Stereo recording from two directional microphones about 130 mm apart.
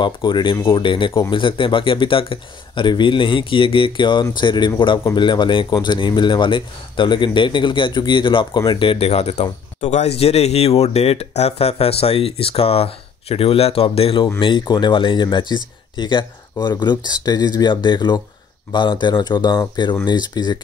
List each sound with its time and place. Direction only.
0.0 s speech: 35° left (ahead or behind)